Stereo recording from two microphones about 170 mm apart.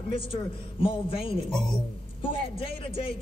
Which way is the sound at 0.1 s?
30° left (ahead or behind).